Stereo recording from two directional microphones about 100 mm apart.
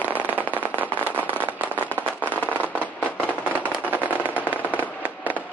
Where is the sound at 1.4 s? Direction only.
20° right (ahead or behind).